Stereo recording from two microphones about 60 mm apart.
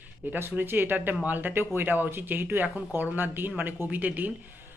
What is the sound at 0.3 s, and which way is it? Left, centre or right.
Speech, right.